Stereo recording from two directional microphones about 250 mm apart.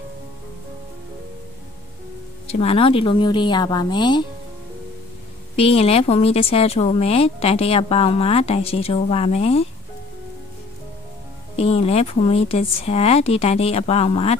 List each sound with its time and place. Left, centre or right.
2.4 s speech: left
5.6 s speech: left
11.5 s speech: left